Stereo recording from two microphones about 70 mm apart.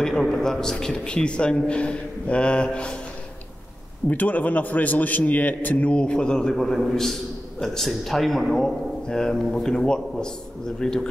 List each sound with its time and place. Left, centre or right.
0.0 s a man's voice: centre
4.1 s a man's voice: left; by 8.7 s centre
9.0 s speech: centre